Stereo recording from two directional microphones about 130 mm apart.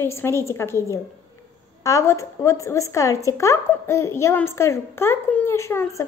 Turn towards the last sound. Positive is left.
turn(degrees=20)  # may be behind; listen again after turning